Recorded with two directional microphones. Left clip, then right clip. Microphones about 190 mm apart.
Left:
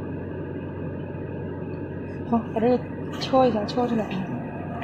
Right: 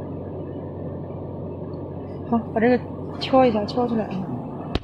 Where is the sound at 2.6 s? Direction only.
20° right (ahead or behind).